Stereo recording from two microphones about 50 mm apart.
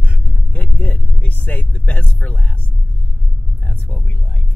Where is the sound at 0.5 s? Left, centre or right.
Left.